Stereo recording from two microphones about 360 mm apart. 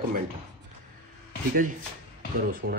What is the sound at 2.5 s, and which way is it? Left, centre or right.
Speech, right.